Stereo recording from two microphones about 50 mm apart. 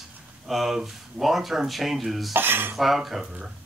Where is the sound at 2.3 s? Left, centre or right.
Right.